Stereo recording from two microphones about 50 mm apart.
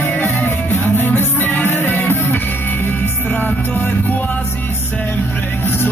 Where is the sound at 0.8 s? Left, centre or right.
Left.